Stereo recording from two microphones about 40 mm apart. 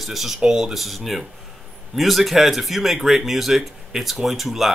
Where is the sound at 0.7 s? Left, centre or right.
Centre.